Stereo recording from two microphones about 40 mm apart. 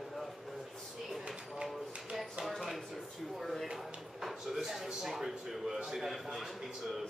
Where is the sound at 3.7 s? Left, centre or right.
Centre.